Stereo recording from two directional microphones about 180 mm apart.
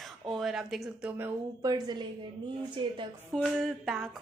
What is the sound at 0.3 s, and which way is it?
A woman's voice, centre (ahead or behind).